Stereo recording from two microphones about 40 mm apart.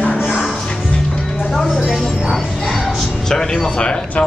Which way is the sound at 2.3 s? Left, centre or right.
Centre.